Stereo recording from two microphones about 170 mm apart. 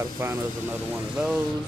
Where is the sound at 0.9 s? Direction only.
5° right (ahead or behind).